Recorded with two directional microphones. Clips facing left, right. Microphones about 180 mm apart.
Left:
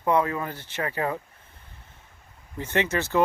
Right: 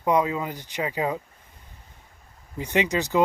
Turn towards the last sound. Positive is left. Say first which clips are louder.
# right 1 dB
turn(degrees=-15)  # may be behind; listen again after turning